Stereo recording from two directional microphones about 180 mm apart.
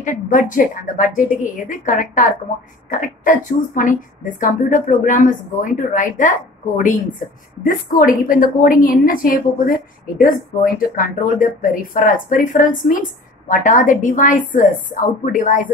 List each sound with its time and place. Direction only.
0.0 s speech: 45° left (ahead or behind)